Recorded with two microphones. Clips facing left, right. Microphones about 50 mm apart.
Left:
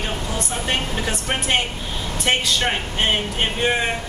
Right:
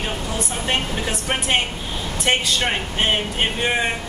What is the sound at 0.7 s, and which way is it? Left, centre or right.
Speech, centre.